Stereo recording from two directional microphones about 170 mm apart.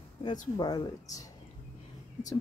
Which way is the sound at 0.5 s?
25° left (ahead or behind).